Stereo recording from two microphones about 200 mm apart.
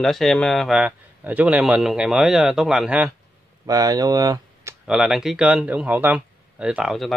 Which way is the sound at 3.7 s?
20° right (ahead or behind).